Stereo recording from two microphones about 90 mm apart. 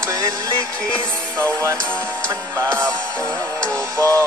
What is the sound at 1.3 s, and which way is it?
Music, 25° right (ahead or behind).